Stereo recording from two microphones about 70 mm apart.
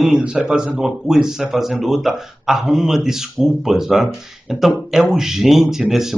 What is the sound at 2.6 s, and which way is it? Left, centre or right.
Speech, centre.